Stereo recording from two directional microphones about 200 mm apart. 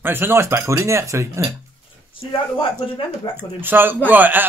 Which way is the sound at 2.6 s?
25° left (ahead or behind).